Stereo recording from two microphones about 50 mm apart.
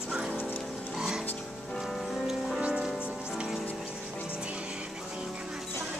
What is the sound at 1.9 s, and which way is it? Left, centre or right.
Music, centre.